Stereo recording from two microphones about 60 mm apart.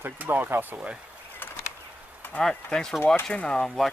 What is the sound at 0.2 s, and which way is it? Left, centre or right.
Speech, right.